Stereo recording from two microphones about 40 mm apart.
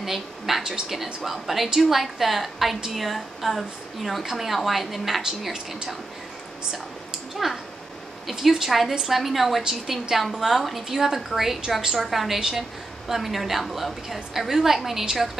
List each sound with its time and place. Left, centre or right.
0.0 s a woman's voice: centre
7.4 s a woman's voice: centre
12.4 s a woman's voice: centre
13.1 s a woman's voice: centre